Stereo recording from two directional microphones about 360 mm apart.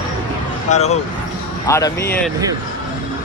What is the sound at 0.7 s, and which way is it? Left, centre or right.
Speech, centre.